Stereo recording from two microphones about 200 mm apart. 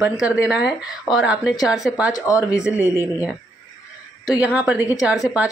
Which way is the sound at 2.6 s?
10° right (ahead or behind).